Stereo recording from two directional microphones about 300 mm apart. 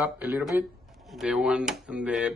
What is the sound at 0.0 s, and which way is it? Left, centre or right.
A man's voice, centre.